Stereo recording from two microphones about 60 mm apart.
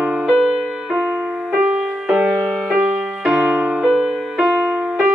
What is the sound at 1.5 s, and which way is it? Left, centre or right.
Music, centre.